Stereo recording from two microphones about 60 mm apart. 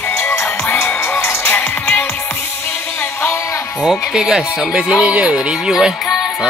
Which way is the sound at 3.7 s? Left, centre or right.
Centre.